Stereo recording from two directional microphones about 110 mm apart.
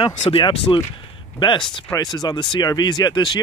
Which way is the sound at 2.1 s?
40° left (ahead or behind).